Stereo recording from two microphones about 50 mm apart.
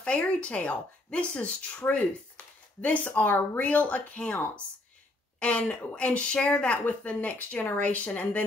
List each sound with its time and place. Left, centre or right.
0.0 s speech: left